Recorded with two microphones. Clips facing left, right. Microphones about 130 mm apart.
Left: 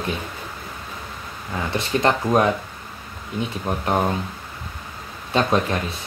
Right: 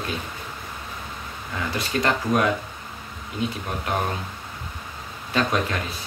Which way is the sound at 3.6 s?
30° left (ahead or behind).